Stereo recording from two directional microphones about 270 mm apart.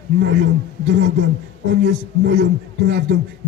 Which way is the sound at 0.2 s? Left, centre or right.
Right.